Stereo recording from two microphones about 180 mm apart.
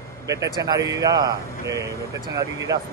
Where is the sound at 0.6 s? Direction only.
20° right (ahead or behind).